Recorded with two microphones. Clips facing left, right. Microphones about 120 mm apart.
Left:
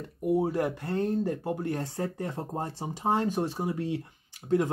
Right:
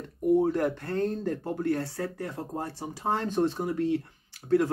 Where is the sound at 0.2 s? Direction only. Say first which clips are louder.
Right 3 dB; 10° left (ahead or behind).